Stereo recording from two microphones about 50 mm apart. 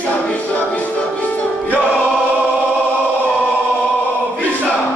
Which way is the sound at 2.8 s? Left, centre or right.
Left.